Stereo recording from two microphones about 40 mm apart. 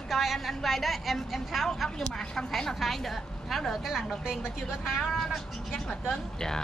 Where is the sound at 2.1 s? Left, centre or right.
Centre.